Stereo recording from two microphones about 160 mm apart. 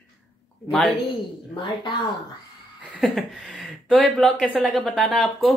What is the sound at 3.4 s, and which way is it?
Speech, 5° left (ahead or behind).